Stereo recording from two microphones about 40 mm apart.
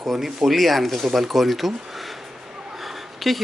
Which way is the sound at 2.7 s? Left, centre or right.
Centre.